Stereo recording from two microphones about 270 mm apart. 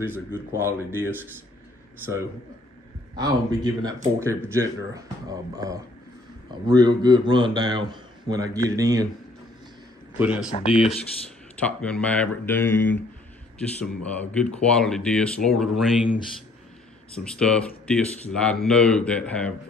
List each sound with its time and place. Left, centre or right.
0.0 s a man's voice: centre
3.2 s a man's voice: centre
10.1 s speech: centre